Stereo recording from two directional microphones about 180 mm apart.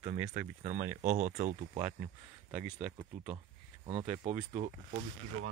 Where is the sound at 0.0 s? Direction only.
40° right (ahead or behind).